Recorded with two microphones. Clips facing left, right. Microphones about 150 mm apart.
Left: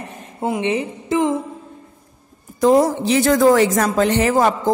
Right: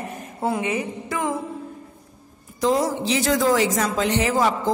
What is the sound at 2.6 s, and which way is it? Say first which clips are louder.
A woman's voice: left 7 dB; 50° left (ahead or behind).